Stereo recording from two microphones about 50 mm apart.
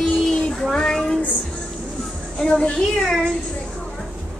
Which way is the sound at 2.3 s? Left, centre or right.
Centre.